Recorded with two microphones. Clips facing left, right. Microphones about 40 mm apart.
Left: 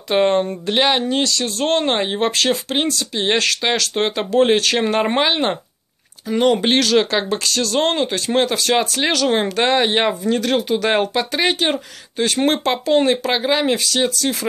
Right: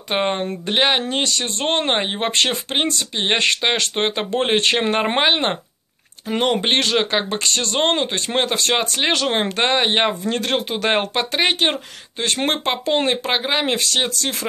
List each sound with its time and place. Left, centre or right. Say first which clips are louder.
0.1 s speech: left 5 dB; right
2.3 s speech: left 1 dB; right
10.2 s speech: left 3 dB; right
13.7 s speech: left 2 dB; right